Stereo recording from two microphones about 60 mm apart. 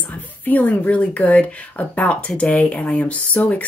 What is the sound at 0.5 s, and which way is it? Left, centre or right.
Speech, left.